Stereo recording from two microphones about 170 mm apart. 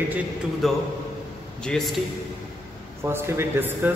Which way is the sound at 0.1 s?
Centre (ahead or behind).